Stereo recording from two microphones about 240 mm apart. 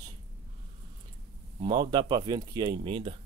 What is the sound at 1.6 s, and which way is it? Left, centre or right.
Speech, centre.